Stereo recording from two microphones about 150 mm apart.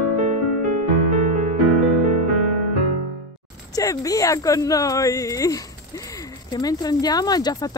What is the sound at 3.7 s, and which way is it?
Speech, 20° left (ahead or behind).